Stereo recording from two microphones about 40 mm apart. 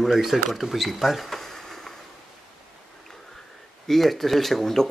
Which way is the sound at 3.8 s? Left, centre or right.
Centre.